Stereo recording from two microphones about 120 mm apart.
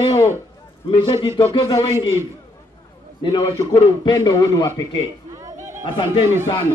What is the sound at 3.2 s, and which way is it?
A man's voice, 40° left (ahead or behind).